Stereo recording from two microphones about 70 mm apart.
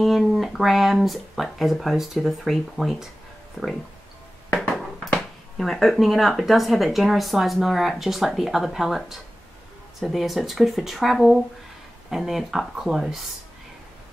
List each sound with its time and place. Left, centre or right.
0.0 s speech: centre
4.6 s bouncing: centre
5.6 s speech: centre